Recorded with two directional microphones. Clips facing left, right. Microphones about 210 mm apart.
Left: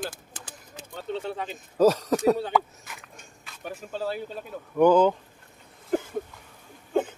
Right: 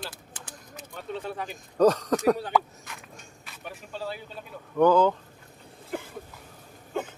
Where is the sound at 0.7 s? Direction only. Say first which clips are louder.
Left 3 dB; 30° left (ahead or behind).